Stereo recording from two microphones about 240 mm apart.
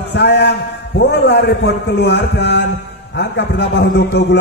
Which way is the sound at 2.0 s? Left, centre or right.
Left.